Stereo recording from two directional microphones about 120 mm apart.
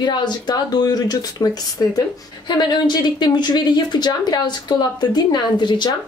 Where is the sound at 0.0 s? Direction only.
40° left (ahead or behind).